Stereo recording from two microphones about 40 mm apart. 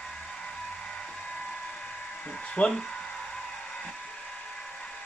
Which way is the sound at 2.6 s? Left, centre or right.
Left.